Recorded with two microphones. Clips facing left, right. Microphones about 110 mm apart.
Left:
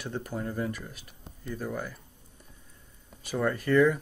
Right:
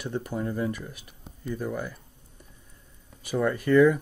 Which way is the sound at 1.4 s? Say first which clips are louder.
Right 3 dB; 10° right (ahead or behind).